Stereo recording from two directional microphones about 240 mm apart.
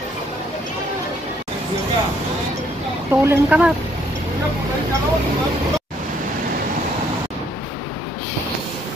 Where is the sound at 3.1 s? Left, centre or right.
Centre.